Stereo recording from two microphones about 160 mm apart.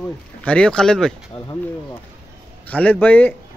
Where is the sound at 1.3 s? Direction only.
35° left (ahead or behind).